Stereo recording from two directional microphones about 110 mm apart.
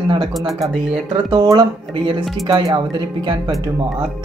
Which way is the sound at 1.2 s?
40° right (ahead or behind).